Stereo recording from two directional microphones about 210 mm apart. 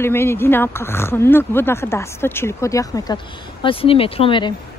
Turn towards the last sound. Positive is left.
turn(degrees=25)  # may be behind; listen again after turning